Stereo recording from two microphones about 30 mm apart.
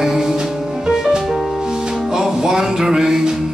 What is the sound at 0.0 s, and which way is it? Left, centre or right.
Music, centre.